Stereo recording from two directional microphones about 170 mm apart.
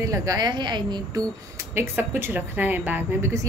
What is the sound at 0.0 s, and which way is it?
A woman's voice, 20° right (ahead or behind).